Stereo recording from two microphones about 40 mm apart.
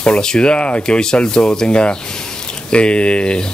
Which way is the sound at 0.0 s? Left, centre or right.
Left.